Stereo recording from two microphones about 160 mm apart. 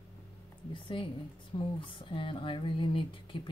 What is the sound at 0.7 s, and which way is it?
Speech, 30° left (ahead or behind).